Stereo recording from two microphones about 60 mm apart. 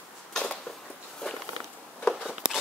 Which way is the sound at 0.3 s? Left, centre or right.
Centre.